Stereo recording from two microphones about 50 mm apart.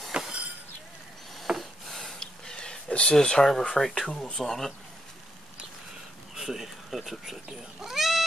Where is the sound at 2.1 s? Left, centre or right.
Centre.